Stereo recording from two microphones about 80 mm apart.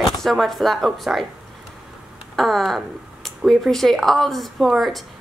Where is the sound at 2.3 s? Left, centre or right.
Centre.